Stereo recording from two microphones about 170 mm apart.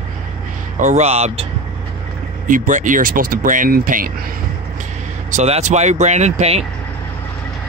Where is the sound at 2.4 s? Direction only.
50° right (ahead or behind).